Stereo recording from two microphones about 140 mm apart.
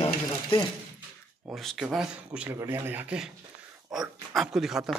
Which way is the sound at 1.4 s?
Centre (ahead or behind).